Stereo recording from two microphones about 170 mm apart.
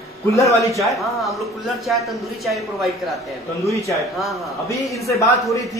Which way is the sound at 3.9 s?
Centre (ahead or behind).